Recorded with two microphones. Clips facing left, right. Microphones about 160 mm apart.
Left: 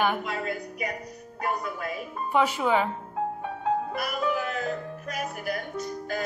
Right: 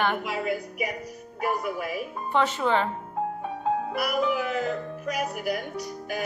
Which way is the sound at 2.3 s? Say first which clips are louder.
Even; 10° left (ahead or behind).